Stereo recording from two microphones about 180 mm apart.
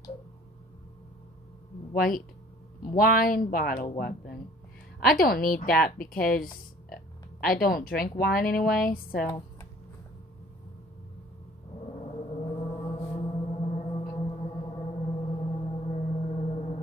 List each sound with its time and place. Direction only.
2.0 s a woman's voice: 50° left (ahead or behind)
5.0 s a woman's voice: 55° left (ahead or behind)
12.1 s gong: 35° left (ahead or behind)
14.1 s gong: 25° left (ahead or behind)